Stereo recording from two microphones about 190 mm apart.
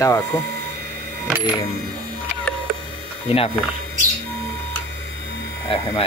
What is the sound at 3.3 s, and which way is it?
Speech, 30° left (ahead or behind).